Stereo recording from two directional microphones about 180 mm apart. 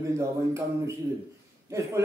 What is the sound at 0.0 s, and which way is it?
Speech, 15° right (ahead or behind).